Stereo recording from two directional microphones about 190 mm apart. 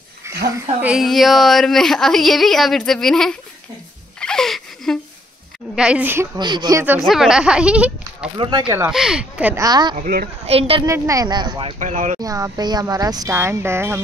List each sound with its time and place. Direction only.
0.5 s a woman's voice: 5° right (ahead or behind)
4.2 s wheeze: 5° left (ahead or behind)
5.8 s speech: 5° right (ahead or behind)
6.3 s speech: 20° right (ahead or behind)
7.0 s a woman's voice: centre (ahead or behind)
8.4 s speech: 25° right (ahead or behind)
8.8 s speech: 5° right (ahead or behind)
9.7 s speech: 20° right (ahead or behind)
9.9 s a woman's voice: 50° right (ahead or behind)
10.4 s a woman's voice: 30° right (ahead or behind)
10.9 s speech: 15° right (ahead or behind)
11.8 s a woman's voice: 40° right (ahead or behind)
12.2 s speech: 20° right (ahead or behind)